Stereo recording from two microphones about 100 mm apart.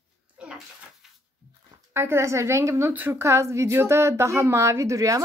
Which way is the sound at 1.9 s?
25° right (ahead or behind).